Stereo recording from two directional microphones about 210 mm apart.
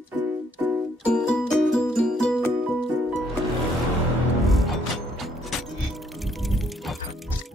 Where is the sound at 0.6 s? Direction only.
10° right (ahead or behind).